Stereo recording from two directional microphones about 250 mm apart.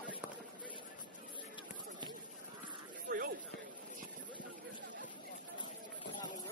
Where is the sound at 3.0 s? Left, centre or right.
Right.